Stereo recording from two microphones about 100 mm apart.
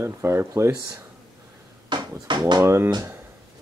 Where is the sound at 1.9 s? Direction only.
50° right (ahead or behind).